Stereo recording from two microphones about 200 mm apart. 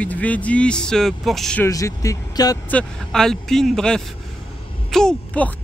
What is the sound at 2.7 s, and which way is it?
Speech, 5° left (ahead or behind).